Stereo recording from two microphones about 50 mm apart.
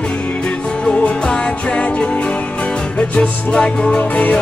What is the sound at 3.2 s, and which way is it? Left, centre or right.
Music, centre.